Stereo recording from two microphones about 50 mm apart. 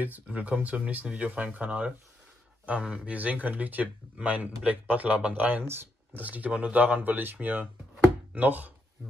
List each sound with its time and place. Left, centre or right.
0.0 s speech: right